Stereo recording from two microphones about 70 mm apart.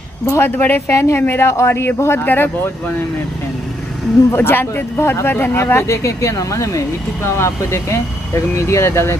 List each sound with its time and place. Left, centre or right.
0.3 s speech: left
0.9 s a woman's voice: left
4.3 s speech: left
7.2 s speech: left